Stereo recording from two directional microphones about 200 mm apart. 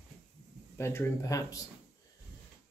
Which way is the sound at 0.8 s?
15° left (ahead or behind).